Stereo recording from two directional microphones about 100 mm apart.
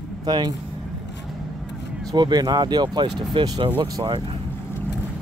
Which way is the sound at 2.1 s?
45° right (ahead or behind).